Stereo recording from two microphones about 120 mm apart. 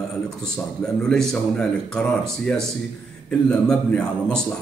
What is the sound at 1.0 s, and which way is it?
A man's voice, 5° left (ahead or behind).